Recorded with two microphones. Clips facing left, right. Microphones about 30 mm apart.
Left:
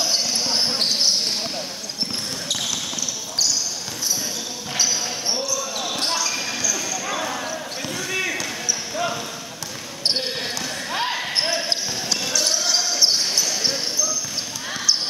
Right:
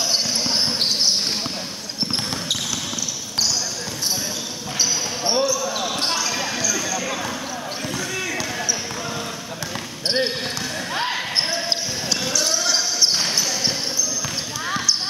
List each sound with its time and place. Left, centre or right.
0.0 s basketball bounce: centre
5.2 s basketball bounce: centre
8.1 s basketball bounce: centre
10.9 s basketball bounce: centre